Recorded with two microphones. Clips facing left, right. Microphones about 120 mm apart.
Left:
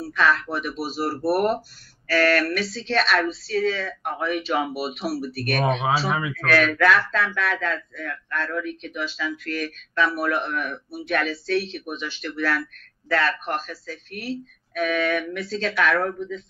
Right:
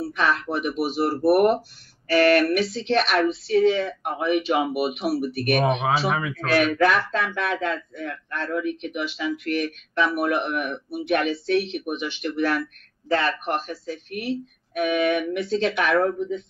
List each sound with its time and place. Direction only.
0.0 s a man's voice: 20° right (ahead or behind)
5.6 s speech: 5° right (ahead or behind)
6.3 s a man's voice: 25° right (ahead or behind)